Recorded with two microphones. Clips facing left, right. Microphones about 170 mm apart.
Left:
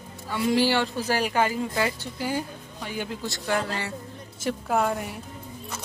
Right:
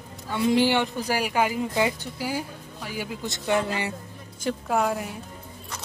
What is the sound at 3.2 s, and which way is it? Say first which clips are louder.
Speech: right 4 dB; 20° right (ahead or behind).